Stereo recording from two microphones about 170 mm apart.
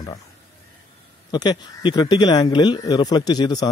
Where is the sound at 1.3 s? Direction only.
25° left (ahead or behind).